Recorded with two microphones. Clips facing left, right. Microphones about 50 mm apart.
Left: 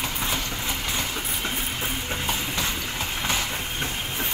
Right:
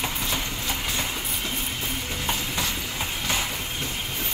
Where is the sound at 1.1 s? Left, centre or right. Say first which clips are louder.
Left 1 dB; centre.